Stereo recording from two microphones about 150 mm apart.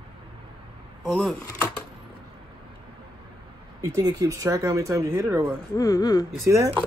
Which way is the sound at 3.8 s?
20° right (ahead or behind).